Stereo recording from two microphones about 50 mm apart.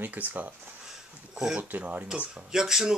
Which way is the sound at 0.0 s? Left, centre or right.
Right.